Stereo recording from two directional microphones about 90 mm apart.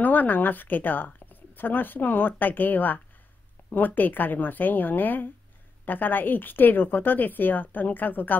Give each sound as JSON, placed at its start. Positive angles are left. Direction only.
{"t": 0.0, "sound": "speech", "side_deg": 20}